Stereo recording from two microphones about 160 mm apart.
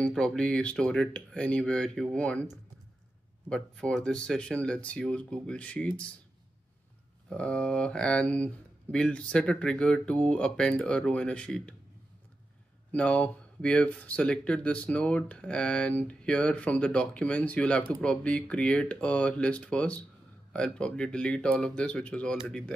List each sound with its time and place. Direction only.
0.0 s speech: 5° left (ahead or behind)
7.2 s speech: 5° left (ahead or behind)
12.9 s speech: 10° left (ahead or behind)